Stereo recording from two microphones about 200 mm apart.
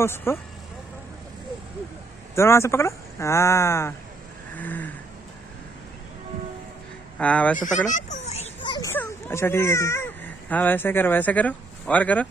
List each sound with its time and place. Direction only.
0.0 s speech: 10° left (ahead or behind)
2.3 s speech: 15° left (ahead or behind)
4.6 s a sound: 10° left (ahead or behind)
7.2 s speech: 5° left (ahead or behind)
7.9 s children playing: 35° left (ahead or behind)
8.7 s speech: 10° left (ahead or behind)